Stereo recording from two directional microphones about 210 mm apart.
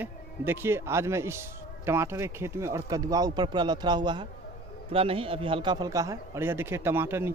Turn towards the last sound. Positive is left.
turn(degrees=-10)  # may be behind; listen again after turning